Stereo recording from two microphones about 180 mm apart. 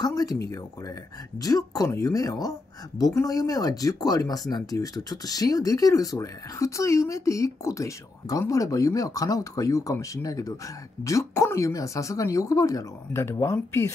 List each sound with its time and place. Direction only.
0.0 s speech: 20° left (ahead or behind)
1.4 s speech: 20° left (ahead or behind)